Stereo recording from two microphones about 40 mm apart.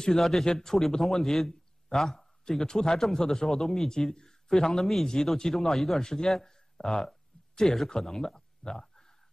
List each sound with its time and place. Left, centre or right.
0.2 s a man's voice: centre